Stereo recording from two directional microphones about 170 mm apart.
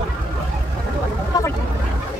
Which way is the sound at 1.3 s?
20° left (ahead or behind).